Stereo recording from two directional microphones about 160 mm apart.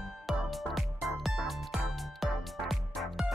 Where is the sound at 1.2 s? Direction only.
Centre (ahead or behind).